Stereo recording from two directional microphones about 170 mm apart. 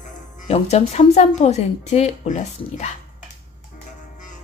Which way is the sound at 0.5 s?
40° left (ahead or behind).